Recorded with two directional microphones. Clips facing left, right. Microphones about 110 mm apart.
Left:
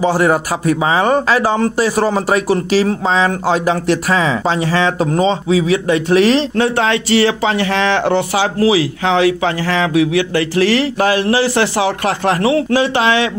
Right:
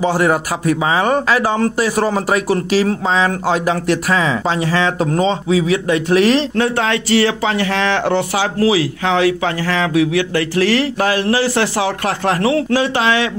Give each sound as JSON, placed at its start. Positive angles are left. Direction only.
{"t": 0.0, "sound": "speech", "side_deg": 25}